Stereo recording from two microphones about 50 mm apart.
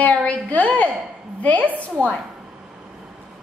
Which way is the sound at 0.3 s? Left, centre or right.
Left.